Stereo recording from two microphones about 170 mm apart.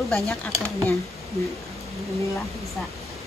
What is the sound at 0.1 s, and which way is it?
Speech, centre (ahead or behind).